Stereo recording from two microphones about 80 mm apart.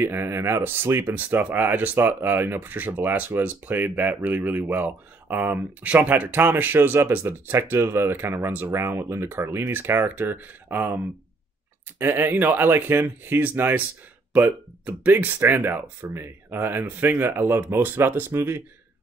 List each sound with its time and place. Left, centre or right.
0.0 s speech: right
12.0 s speech: right